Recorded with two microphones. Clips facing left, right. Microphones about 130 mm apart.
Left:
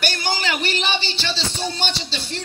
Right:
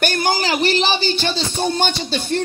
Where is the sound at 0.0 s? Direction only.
45° right (ahead or behind).